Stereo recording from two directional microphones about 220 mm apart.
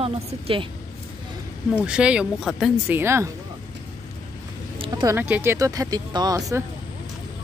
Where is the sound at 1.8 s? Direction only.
5° right (ahead or behind).